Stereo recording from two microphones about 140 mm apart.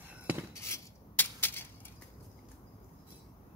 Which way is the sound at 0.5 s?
20° left (ahead or behind).